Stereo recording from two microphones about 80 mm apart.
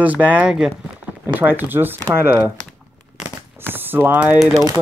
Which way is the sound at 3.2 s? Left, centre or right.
Right.